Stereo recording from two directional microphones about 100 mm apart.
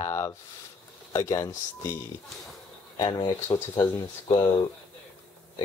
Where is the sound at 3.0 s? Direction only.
50° left (ahead or behind).